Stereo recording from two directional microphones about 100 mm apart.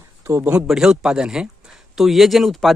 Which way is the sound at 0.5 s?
10° right (ahead or behind).